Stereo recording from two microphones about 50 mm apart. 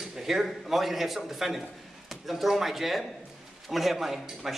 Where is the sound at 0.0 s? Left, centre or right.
Centre.